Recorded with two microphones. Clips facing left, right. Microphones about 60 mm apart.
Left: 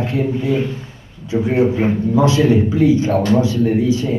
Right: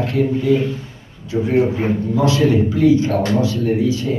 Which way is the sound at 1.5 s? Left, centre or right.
Left.